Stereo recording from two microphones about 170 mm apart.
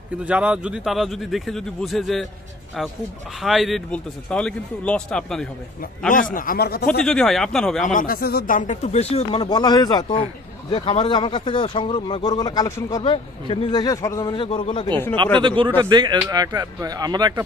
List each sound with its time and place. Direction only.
0.2 s a man's voice: 5° right (ahead or behind)
3.3 s a man's voice: centre (ahead or behind)
5.8 s a man's voice: 55° left (ahead or behind)
6.9 s a man's voice: 5° left (ahead or behind)
7.8 s speech: 50° left (ahead or behind); by 9.4 s 35° left (ahead or behind)
9.4 s speech: 25° left (ahead or behind)
13.0 s speech: 30° left (ahead or behind)
14.3 s speech: 30° left (ahead or behind)
15.4 s speech: 30° right (ahead or behind)